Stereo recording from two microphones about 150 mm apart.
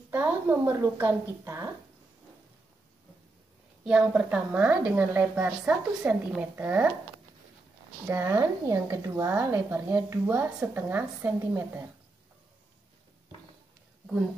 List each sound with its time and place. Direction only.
0.1 s speech: 15° right (ahead or behind)
3.8 s speech: 5° right (ahead or behind)
8.1 s speech: 15° right (ahead or behind)